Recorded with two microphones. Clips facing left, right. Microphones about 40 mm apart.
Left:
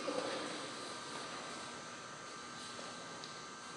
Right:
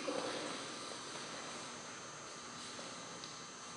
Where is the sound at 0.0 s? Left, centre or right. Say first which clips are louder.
Left 1 dB; centre.